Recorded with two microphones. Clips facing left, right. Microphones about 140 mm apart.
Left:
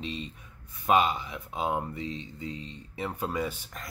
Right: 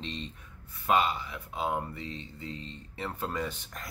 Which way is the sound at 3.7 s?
Centre (ahead or behind).